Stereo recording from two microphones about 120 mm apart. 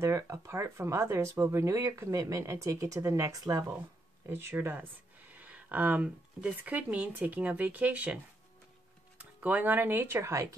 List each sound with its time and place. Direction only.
0.0 s speech: 25° right (ahead or behind)
4.3 s speech: 20° right (ahead or behind)
9.2 s speech: 15° right (ahead or behind)